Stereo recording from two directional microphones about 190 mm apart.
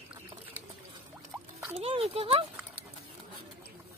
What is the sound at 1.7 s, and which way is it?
Speech, 30° right (ahead or behind).